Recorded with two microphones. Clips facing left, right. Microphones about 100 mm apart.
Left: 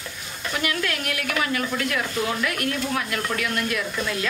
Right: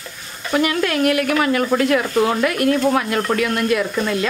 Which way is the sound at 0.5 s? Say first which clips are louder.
Right 8 dB; 50° right (ahead or behind).